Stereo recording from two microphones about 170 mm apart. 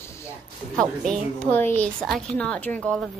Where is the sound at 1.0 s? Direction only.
5° left (ahead or behind).